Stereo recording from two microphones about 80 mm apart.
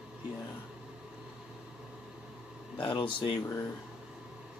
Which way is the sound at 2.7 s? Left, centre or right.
Left.